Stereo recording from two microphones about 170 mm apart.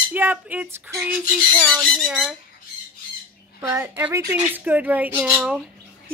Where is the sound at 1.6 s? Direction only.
5° left (ahead or behind).